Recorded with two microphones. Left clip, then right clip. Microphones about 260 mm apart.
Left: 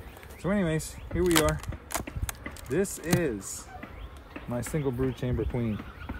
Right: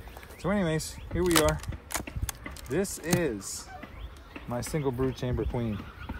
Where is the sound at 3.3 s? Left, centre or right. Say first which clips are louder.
Even; right.